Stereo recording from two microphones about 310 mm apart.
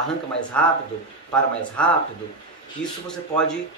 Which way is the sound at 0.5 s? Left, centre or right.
Centre.